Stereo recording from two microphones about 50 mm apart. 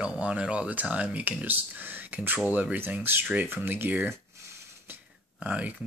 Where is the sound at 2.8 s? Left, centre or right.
Right.